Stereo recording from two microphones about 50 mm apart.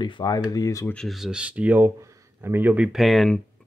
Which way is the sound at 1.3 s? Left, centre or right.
Right.